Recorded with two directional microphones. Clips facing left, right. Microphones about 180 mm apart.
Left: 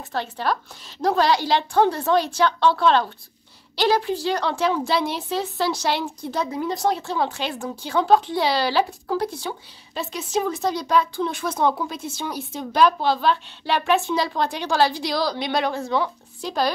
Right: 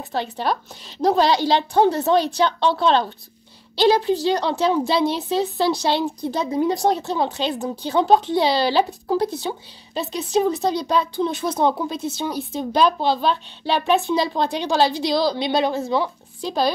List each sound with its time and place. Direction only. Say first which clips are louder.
0.0 s a woman's voice: right 2 dB; 20° right (ahead or behind)
10.1 s a woman's voice: right 5 dB; 35° right (ahead or behind); by 16.1 s 15° right (ahead or behind)